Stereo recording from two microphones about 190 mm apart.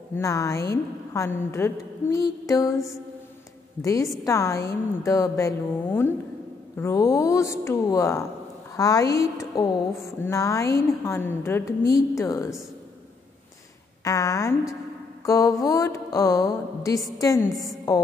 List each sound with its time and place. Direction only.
0.1 s mantra: 15° left (ahead or behind)
14.0 s mantra: 15° left (ahead or behind)